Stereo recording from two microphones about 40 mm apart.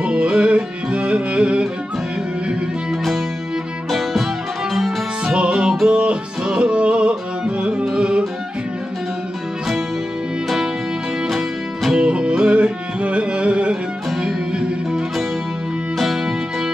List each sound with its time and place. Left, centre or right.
0.0 s music: right
3.9 s music: centre
5.2 s music: right
11.9 s music: right